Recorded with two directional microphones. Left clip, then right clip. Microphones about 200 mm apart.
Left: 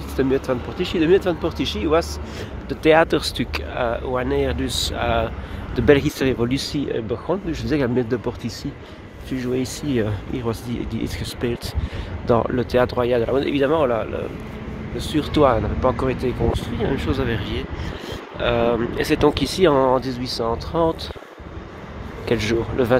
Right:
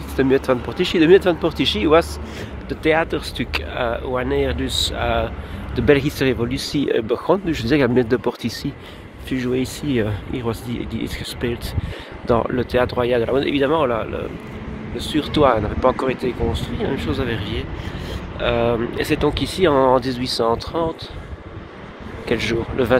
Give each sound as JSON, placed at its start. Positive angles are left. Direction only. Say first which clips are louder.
{"t": 0.1, "sound": "speech", "louder": "right 3 dB", "side_deg": -5}
{"t": 0.5, "sound": "speech", "louder": "right 4 dB", "side_deg": -15}
{"t": 2.7, "sound": "speech", "louder": "left 3 dB", "side_deg": 10}
{"t": 3.5, "sound": "speech", "louder": "right 3 dB", "side_deg": 5}
{"t": 6.7, "sound": "speech", "louder": "right 5 dB", "side_deg": -20}
{"t": 7.7, "sound": "speech", "louder": "right 4 dB", "side_deg": -10}
{"t": 22.2, "sound": "speech", "louder": "even", "side_deg": 10}